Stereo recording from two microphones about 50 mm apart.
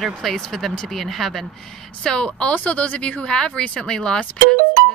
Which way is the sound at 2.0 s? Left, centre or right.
Centre.